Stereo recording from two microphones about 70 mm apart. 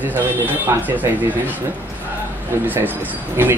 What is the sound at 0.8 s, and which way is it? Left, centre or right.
Speech, right.